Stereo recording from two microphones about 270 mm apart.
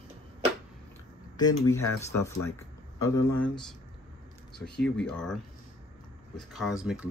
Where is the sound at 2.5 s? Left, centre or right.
Centre.